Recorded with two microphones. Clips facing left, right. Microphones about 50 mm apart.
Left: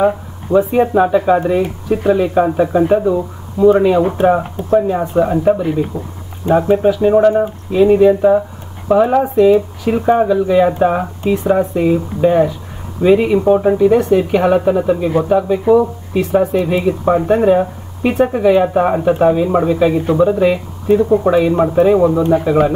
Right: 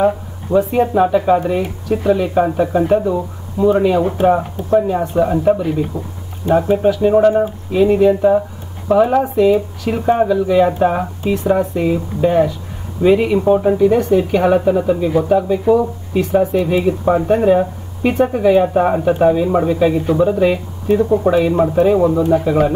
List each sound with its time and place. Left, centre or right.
0.0 s speech: centre
1.9 s speech: centre
15.7 s speech: centre